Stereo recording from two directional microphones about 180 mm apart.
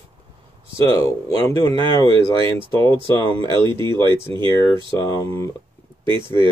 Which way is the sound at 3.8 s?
25° right (ahead or behind).